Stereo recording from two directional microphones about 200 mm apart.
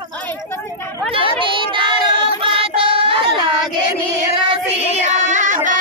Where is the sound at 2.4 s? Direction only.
25° right (ahead or behind).